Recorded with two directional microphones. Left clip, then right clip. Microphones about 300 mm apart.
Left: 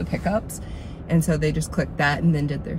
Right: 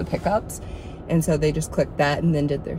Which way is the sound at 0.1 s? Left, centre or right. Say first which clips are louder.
Right 3 dB; right.